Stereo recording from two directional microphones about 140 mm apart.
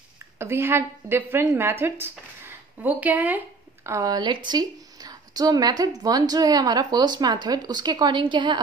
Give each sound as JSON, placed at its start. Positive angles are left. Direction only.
{"t": 0.4, "sound": "a woman's voice", "side_deg": -20}